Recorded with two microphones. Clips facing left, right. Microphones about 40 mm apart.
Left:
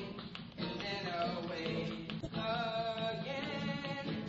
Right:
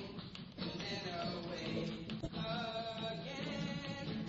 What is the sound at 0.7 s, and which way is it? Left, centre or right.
Music, left.